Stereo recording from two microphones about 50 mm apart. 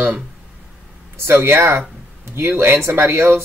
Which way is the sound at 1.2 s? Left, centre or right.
Right.